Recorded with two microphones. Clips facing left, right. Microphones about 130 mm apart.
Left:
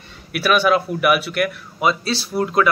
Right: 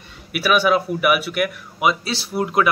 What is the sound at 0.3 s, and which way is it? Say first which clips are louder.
Speech: left 1 dB; 5° right (ahead or behind).